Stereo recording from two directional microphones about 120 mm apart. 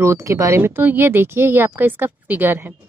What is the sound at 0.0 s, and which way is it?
A woman's voice, 25° right (ahead or behind).